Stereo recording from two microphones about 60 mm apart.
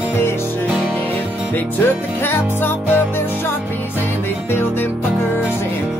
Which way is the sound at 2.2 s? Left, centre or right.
Left.